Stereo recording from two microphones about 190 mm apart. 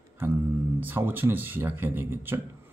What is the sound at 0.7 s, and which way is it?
Speech, 10° right (ahead or behind).